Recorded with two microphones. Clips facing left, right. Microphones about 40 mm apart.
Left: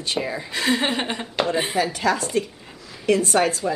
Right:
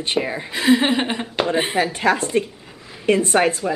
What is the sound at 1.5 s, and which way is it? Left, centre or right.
A woman's voice, right.